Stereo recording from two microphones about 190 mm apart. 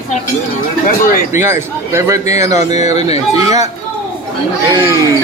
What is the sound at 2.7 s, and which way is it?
Speech, 35° left (ahead or behind).